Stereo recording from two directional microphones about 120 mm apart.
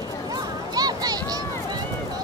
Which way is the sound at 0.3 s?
35° right (ahead or behind).